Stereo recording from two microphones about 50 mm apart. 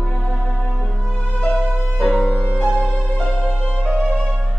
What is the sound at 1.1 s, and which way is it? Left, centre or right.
Music, left.